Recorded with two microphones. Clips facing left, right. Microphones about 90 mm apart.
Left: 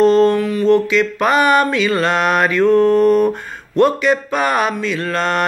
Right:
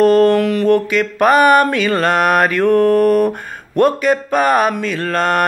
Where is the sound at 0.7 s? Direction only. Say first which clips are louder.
Even; 50° right (ahead or behind).